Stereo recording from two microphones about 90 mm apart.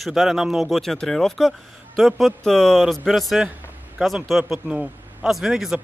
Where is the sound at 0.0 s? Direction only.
Centre (ahead or behind).